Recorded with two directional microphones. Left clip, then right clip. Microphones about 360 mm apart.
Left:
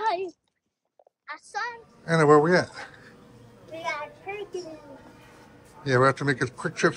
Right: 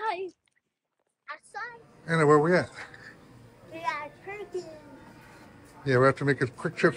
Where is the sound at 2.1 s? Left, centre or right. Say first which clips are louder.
Left 3 dB; centre.